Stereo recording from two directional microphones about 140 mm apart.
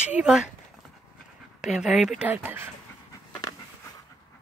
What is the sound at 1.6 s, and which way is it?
Speech, centre (ahead or behind).